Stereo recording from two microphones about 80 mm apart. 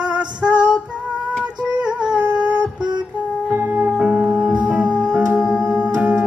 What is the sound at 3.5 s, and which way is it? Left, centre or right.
Music, right.